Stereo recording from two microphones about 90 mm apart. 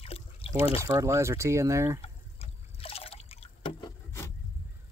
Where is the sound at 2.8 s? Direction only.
90° left.